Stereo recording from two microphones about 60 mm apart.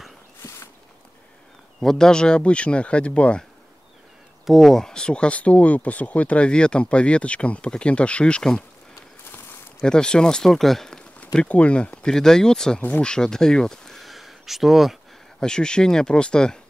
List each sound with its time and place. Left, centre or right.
1.8 s speech: centre
4.5 s speech: centre
9.8 s speech: centre
11.3 s speech: left
12.1 s speech: centre
15.4 s speech: centre